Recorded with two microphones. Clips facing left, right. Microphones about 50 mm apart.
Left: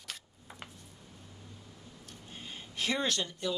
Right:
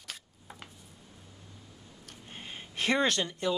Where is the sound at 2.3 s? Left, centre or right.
Right.